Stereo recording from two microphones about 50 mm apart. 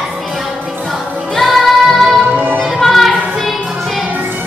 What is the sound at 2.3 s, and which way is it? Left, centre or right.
Music, right.